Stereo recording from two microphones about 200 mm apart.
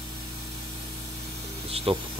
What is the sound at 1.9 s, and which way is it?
Speech, 25° right (ahead or behind).